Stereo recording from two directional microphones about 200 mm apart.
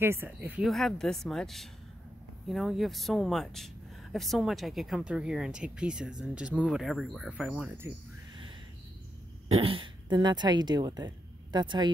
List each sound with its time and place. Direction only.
0.0 s speech: 10° right (ahead or behind)
9.5 s speech: 25° right (ahead or behind)